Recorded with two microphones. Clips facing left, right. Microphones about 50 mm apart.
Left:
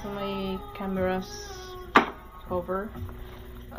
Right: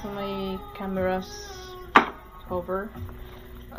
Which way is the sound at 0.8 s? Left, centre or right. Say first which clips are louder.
Even; right.